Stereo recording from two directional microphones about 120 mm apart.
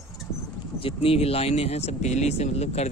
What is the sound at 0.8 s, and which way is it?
Speech, 50° left (ahead or behind).